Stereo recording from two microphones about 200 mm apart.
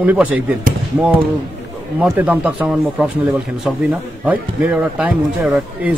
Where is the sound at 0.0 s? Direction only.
10° right (ahead or behind).